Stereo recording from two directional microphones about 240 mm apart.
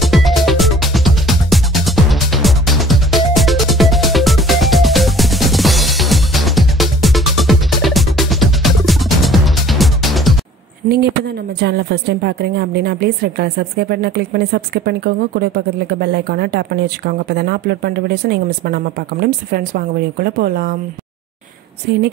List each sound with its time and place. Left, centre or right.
0.0 s music: centre
11.6 s a woman's voice: right